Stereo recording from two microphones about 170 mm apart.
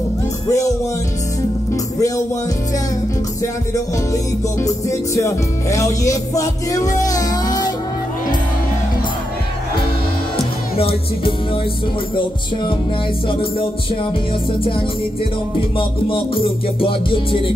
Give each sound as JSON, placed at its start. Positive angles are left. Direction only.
{"t": 0.5, "sound": "music", "side_deg": 20}
{"t": 4.1, "sound": "music", "side_deg": 20}
{"t": 10.8, "sound": "music", "side_deg": 35}
{"t": 15.8, "sound": "music", "side_deg": 30}